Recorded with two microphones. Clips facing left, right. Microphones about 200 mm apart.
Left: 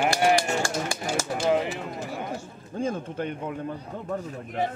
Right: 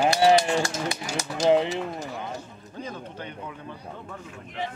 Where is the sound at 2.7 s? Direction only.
45° left (ahead or behind).